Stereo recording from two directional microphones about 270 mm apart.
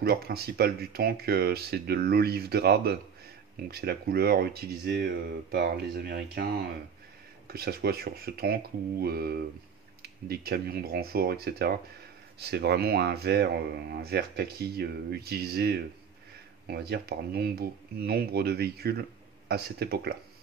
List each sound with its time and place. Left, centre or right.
0.0 s speech: right